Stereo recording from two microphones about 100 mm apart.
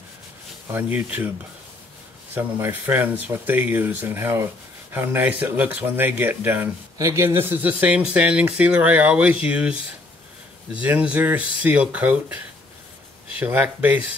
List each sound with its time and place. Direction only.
0.7 s speech: 20° right (ahead or behind)
2.3 s speech: 20° right (ahead or behind)
7.0 s speech: 30° right (ahead or behind); by 12.4 s 15° right (ahead or behind)
13.4 s speech: 15° right (ahead or behind)